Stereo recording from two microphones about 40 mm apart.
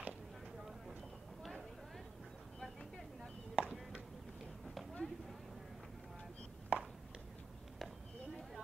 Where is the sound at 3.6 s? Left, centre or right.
Right.